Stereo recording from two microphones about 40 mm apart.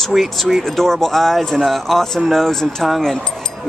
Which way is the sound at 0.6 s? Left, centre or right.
Centre.